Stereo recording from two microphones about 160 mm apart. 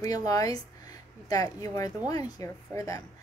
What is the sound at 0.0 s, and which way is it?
A woman's voice, 20° left (ahead or behind).